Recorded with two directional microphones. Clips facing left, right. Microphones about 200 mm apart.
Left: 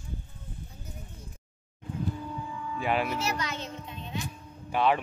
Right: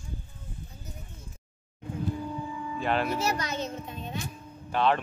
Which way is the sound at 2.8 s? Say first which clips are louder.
Right 1 dB; 10° left (ahead or behind).